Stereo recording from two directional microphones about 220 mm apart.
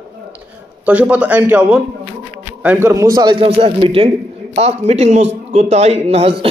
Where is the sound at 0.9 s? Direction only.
5° right (ahead or behind).